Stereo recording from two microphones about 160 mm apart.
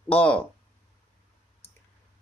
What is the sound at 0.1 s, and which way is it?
Speech, 10° left (ahead or behind).